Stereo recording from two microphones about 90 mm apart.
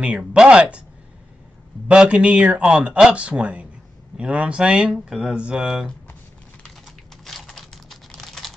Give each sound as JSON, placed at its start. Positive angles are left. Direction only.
{"t": 0.0, "sound": "speech", "side_deg": -15}
{"t": 1.9, "sound": "speech", "side_deg": -10}
{"t": 7.2, "sound": "computer keyboard", "side_deg": 5}